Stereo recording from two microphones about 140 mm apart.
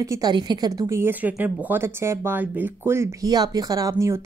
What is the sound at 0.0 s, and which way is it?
Speech, 25° right (ahead or behind).